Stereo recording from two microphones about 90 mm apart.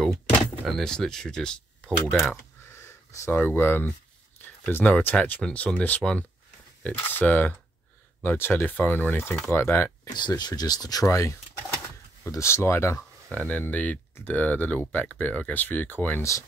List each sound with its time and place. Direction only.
0.7 s speech: 5° left (ahead or behind)
2.7 s speech: 25° left (ahead or behind)
10.0 s speech: 55° left (ahead or behind); by 13.0 s 30° left (ahead or behind)
13.3 s speech: 15° left (ahead or behind)
16.2 s speech: 35° left (ahead or behind)